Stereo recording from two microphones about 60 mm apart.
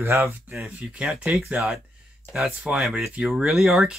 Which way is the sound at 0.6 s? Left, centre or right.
Right.